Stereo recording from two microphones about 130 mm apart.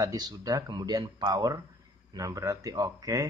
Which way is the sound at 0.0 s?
30° right (ahead or behind).